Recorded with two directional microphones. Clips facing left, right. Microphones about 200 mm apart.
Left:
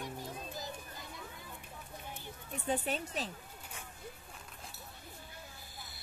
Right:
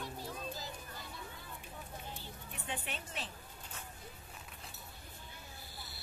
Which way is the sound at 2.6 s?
40° left (ahead or behind).